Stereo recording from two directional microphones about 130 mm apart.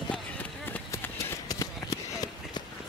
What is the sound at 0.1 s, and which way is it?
Run, 10° left (ahead or behind).